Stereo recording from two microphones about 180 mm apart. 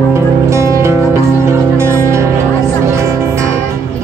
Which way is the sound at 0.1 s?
15° right (ahead or behind).